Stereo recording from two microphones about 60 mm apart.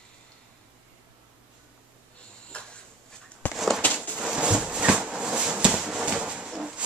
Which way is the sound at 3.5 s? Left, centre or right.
Centre.